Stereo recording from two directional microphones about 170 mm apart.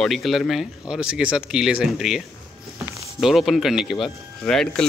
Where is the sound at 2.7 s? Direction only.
15° right (ahead or behind).